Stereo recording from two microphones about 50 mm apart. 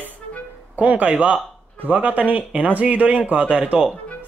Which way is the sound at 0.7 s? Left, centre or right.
Right.